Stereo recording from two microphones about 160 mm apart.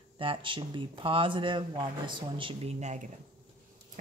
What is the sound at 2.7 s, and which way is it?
Speech, 45° right (ahead or behind).